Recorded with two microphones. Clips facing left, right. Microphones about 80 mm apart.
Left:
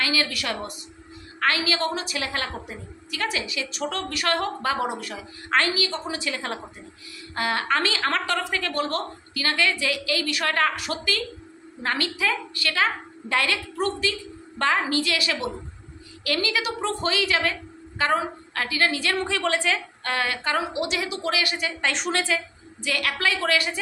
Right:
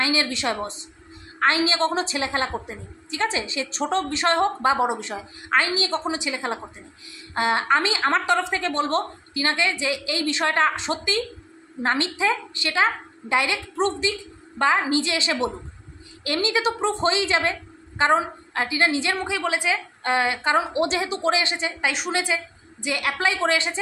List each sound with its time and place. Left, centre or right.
0.0 s a woman's voice: right
6.1 s a woman's voice: centre
21.8 s a woman's voice: centre
22.2 s a woman's voice: centre